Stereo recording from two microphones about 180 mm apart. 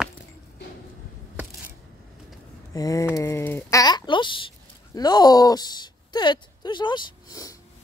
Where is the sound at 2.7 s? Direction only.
20° left (ahead or behind).